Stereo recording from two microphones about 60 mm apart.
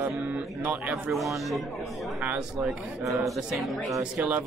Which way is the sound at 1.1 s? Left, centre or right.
Centre.